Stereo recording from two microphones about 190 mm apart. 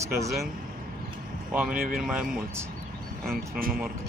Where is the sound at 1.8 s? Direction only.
50° right (ahead or behind).